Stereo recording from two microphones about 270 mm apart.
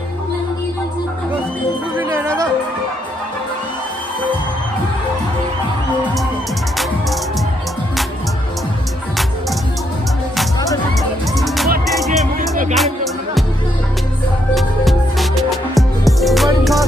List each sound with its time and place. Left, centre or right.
2.0 s music: centre
11.3 s music: centre
12.4 s music: right
12.7 s music: centre
14.5 s music: centre